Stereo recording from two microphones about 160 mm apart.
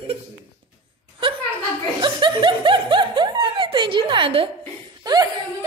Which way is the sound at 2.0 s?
30° right (ahead or behind).